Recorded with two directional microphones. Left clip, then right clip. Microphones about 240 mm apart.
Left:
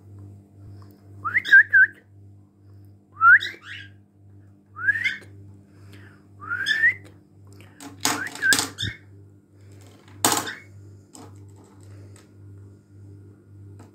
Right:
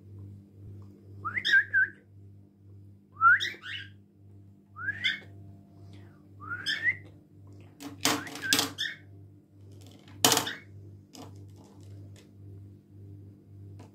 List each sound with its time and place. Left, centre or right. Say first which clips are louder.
1.2 s whistling: left 10 dB; centre
3.2 s whistling: left 7 dB; centre
4.8 s whistling: left 8 dB; centre
7.7 s a sound: left 3 dB; centre